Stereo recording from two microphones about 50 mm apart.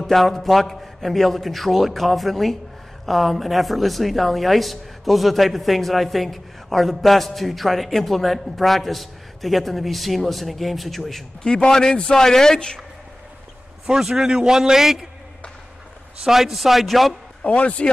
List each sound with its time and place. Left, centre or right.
0.0 s speech: centre
11.4 s a man's voice: centre
13.8 s a man's voice: centre
16.3 s speech: centre
17.4 s speech: left